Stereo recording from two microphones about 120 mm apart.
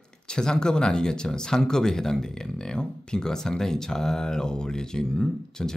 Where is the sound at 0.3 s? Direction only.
5° left (ahead or behind).